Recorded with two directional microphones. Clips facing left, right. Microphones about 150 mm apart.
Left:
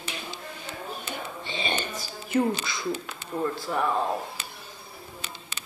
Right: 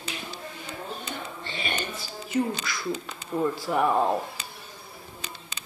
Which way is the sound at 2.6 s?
25° left (ahead or behind).